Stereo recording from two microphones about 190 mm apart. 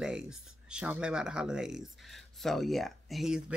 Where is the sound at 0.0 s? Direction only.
5° right (ahead or behind).